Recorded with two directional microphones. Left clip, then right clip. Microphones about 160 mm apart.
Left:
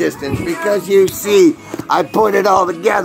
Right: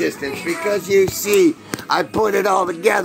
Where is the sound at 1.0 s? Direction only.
5° left (ahead or behind).